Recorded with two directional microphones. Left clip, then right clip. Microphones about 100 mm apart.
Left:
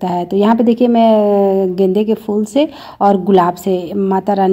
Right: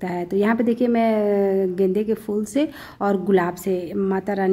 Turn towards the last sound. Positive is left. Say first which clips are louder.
# left 9 dB
turn(degrees=20)  # may be behind; listen again after turning